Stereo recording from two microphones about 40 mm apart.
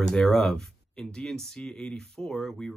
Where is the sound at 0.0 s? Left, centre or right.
Centre.